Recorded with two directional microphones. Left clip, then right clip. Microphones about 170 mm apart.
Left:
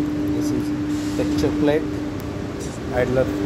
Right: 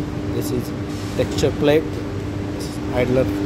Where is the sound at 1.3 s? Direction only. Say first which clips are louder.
Right 3 dB; 40° right (ahead or behind).